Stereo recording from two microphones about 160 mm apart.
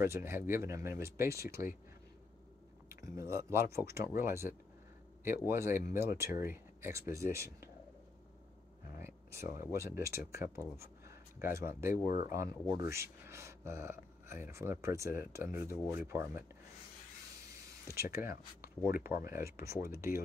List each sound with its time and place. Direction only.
0.0 s speech: 15° right (ahead or behind)
2.9 s speech: 15° right (ahead or behind)
5.5 s speech: 15° right (ahead or behind)
9.0 s a sound: 15° right (ahead or behind)
9.9 s speech: 15° right (ahead or behind)
17.9 s speech: 15° right (ahead or behind)